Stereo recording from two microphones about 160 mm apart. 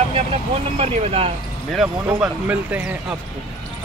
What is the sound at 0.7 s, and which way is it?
Speech, 40° right (ahead or behind).